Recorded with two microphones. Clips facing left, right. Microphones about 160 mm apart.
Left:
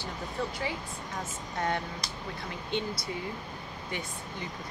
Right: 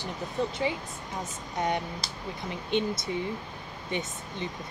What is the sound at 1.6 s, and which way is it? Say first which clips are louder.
Speech: right 2 dB; 20° right (ahead or behind).